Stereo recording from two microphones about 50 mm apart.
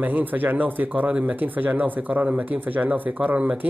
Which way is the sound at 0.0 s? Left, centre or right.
Right.